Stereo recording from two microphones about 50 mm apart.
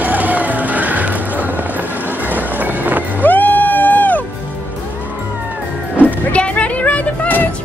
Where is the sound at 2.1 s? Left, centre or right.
Right.